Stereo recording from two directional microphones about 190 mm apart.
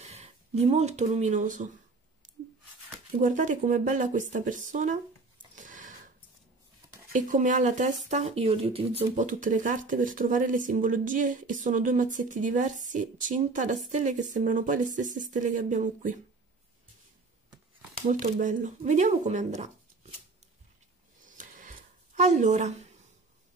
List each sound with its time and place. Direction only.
0.0 s speech: 35° right (ahead or behind)
3.2 s speech: 40° right (ahead or behind)
5.6 s a sound: 45° right (ahead or behind)
7.1 s speech: 40° right (ahead or behind)
18.0 s speech: 40° right (ahead or behind)
21.2 s a sound: 45° right (ahead or behind)